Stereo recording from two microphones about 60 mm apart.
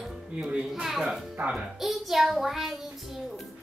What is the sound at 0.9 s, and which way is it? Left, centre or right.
Music, centre.